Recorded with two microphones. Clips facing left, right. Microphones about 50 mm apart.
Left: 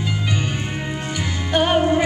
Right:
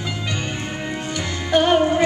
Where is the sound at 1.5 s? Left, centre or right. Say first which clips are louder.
Right 1 dB; centre.